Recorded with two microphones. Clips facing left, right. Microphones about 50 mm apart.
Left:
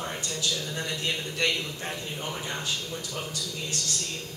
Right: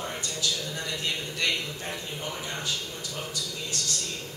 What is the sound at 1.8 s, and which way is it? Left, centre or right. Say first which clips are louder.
Speech: left 1 dB; centre.